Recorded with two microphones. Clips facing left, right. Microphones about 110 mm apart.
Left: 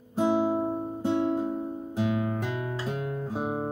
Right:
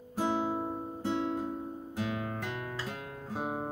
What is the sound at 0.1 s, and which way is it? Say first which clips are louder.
Guitar: left 7 dB; 15° left (ahead or behind).